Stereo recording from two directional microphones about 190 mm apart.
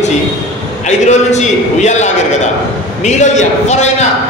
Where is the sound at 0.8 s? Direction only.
40° left (ahead or behind).